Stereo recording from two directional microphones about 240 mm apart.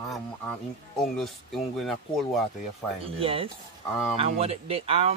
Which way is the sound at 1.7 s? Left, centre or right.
Centre.